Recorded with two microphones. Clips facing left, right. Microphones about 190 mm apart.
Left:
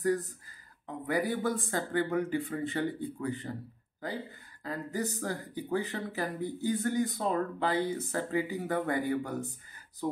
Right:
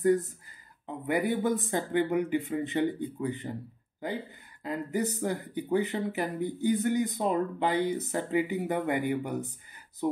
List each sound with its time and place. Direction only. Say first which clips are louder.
0.0 s speech: right 5 dB; 25° right (ahead or behind)
4.6 s speech: right 4 dB; 20° right (ahead or behind)